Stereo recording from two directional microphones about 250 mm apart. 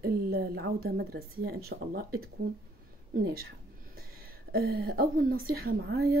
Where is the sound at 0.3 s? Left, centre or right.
Right.